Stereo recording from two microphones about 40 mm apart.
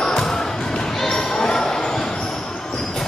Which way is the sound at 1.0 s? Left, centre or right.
Centre.